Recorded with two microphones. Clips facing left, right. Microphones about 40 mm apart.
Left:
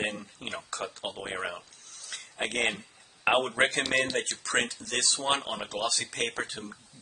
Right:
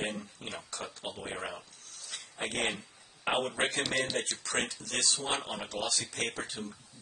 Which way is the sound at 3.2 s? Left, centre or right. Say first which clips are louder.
Left 6 dB; left.